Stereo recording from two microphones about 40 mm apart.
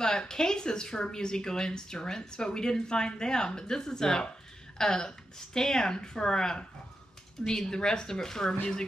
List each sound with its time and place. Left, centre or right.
0.0 s speech: centre